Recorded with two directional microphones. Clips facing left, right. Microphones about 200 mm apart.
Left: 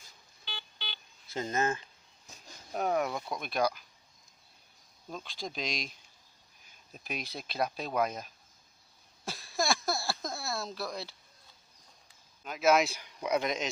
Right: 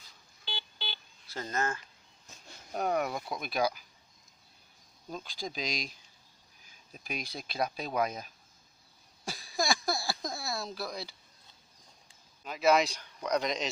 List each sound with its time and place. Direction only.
0.5 s a sound: 35° right (ahead or behind)
1.3 s speech: 20° left (ahead or behind)
2.7 s speech: centre (ahead or behind)
5.1 s speech: centre (ahead or behind)
9.2 s a sound: centre (ahead or behind)
12.4 s speech: centre (ahead or behind)